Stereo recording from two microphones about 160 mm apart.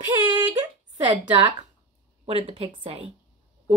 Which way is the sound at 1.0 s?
30° right (ahead or behind).